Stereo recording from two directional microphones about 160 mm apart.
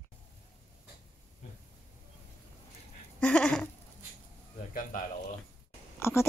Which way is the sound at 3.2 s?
5° left (ahead or behind).